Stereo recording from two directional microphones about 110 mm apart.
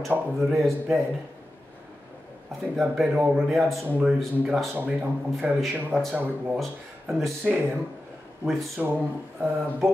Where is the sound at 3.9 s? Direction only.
15° right (ahead or behind).